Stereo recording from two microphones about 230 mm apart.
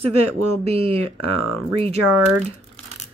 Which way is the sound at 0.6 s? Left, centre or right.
Right.